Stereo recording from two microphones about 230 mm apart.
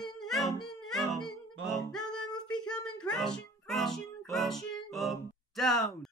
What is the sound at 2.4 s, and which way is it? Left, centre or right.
A child's voice, centre.